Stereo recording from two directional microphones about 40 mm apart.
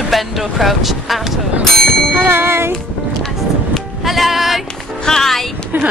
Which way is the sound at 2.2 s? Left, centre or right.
Right.